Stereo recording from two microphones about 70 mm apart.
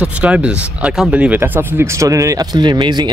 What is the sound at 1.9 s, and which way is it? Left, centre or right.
Speech, right.